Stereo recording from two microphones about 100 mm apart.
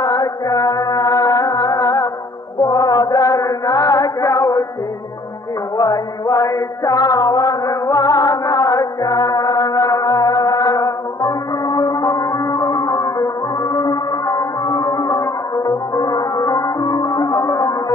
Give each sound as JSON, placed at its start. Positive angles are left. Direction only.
{"t": 0.0, "sound": "music", "side_deg": 40}
{"t": 2.6, "sound": "chant", "side_deg": 40}
{"t": 5.8, "sound": "a sound", "side_deg": 35}
{"t": 13.7, "sound": "music", "side_deg": 35}